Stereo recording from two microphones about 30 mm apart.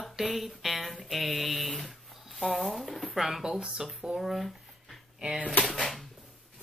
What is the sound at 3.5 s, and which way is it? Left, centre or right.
Speech, centre.